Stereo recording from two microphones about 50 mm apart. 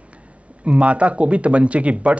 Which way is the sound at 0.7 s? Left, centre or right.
Right.